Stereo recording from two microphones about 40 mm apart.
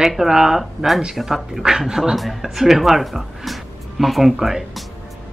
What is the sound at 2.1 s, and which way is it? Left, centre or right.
Speech, centre.